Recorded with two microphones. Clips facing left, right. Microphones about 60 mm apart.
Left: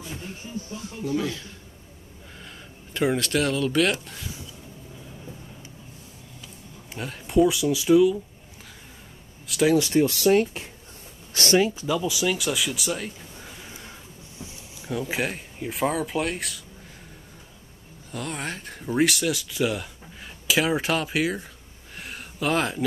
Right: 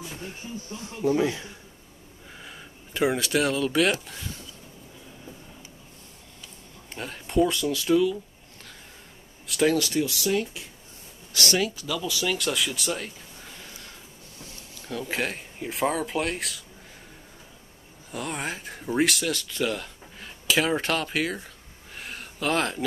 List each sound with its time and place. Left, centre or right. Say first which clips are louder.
1.0 s speech: right 4 dB; right
2.4 s speech: right 1 dB; centre
6.9 s speech: left 2 dB; centre
9.5 s speech: left 2 dB; centre
9.8 s speech: left 5 dB; left
11.3 s speech: left 5 dB; left
12.1 s speech: left 2 dB; centre
18.1 s speech: even; centre
21.9 s a sound: left 1 dB; centre